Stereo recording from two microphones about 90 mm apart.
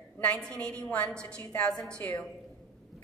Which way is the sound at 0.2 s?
15° left (ahead or behind).